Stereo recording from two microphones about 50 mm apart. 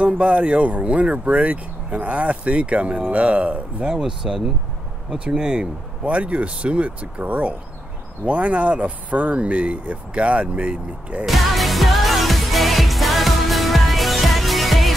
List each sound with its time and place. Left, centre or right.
0.0 s speech: right
3.9 s speech: centre
11.2 s music: centre